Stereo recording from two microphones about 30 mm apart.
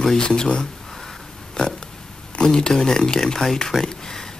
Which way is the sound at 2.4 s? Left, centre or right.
Left.